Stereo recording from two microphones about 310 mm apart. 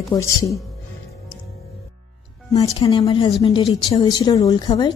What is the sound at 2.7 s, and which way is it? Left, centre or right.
A woman's voice, centre.